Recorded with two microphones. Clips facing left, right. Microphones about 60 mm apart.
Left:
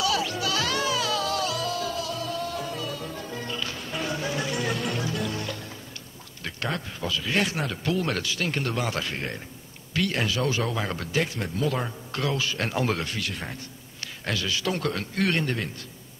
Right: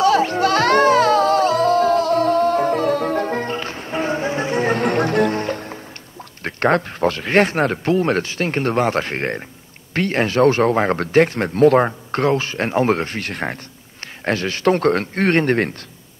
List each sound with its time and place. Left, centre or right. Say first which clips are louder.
0.0 s music: right 11 dB; right
6.4 s speech: right 14 dB; right
14.0 s speech: right 8 dB; right